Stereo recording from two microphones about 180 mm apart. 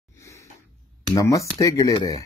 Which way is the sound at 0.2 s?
15° left (ahead or behind).